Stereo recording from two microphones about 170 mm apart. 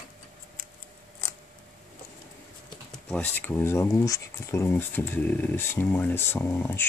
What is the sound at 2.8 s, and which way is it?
Speech, 5° left (ahead or behind).